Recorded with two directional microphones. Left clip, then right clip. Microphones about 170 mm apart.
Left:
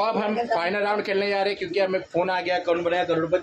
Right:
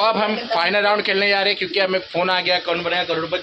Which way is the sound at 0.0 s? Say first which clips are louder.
Right 5 dB; 10° right (ahead or behind).